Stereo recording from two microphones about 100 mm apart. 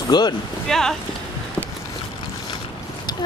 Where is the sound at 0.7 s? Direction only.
5° left (ahead or behind).